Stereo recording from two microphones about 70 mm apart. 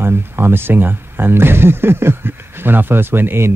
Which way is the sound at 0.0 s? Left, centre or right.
Right.